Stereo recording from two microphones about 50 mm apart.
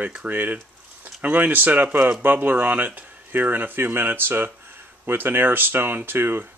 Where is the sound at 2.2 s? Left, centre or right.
Right.